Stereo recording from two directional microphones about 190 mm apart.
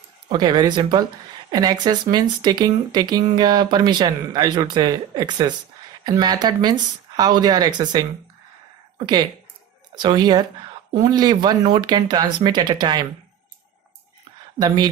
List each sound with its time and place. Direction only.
0.3 s speech: 20° right (ahead or behind)